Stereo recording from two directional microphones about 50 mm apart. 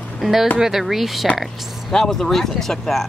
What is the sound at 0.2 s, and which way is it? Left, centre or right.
Speech, centre.